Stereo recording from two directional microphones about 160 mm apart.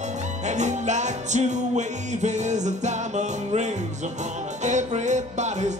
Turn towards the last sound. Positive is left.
turn(degrees=-45)  # may be behind; listen again after turning